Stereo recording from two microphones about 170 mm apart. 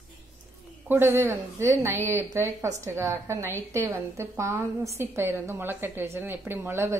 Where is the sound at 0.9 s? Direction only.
15° right (ahead or behind).